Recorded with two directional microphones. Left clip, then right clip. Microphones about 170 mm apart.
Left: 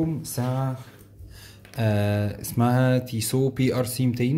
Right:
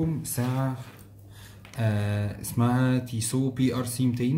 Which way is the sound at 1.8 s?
35° left (ahead or behind).